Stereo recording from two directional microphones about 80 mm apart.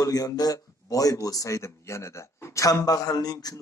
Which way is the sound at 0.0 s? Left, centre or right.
Left.